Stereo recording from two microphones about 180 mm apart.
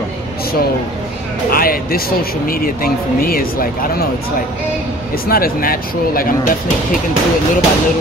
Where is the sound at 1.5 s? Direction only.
55° left (ahead or behind).